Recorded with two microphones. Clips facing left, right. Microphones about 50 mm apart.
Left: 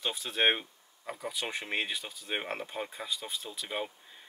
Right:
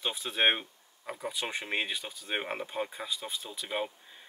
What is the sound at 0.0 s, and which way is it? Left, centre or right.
Speech, centre.